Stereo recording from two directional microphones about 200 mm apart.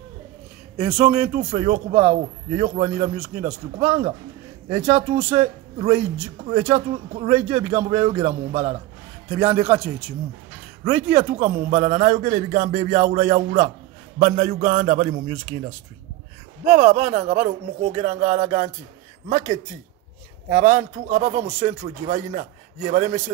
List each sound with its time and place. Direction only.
0.7 s a man's voice: 25° right (ahead or behind)
16.6 s speech: 35° right (ahead or behind)
20.5 s speech: 40° right (ahead or behind)